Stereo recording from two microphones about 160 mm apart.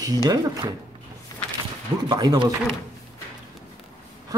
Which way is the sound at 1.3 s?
20° left (ahead or behind).